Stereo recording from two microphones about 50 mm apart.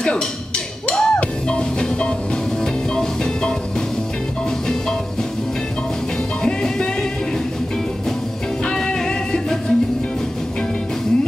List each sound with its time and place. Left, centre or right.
0.8 s music: centre
6.4 s music: centre
8.7 s music: centre